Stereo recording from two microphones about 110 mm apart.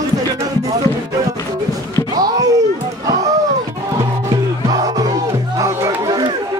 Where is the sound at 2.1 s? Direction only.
35° right (ahead or behind).